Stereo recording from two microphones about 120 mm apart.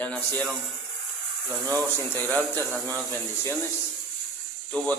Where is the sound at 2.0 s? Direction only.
15° left (ahead or behind).